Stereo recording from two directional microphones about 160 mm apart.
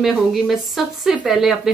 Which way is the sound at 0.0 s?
Centre (ahead or behind).